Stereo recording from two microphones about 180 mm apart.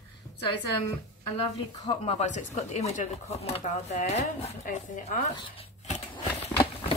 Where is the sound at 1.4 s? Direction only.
30° left (ahead or behind).